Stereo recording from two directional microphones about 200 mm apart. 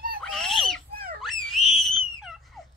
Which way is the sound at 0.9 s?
45° right (ahead or behind).